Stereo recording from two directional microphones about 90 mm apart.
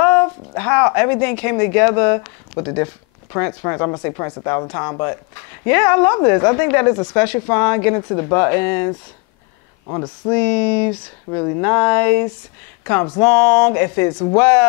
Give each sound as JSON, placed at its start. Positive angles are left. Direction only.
{"t": 0.0, "sound": "a woman's voice", "side_deg": 20}
{"t": 9.8, "sound": "speech", "side_deg": 30}
{"t": 10.3, "sound": "a woman's voice", "side_deg": 15}